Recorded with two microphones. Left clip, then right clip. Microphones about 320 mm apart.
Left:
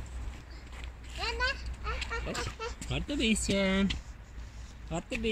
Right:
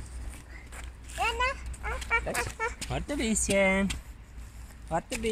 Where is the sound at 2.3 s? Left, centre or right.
Right.